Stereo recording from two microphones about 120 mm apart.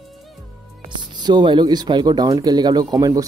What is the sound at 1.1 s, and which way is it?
Speech, 35° right (ahead or behind).